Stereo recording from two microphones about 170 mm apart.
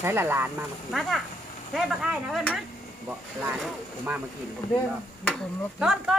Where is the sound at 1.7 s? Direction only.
Centre (ahead or behind).